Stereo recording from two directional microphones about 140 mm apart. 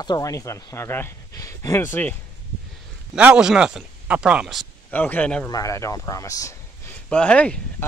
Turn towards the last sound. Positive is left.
turn(degrees=10)  # may be behind; listen again after turning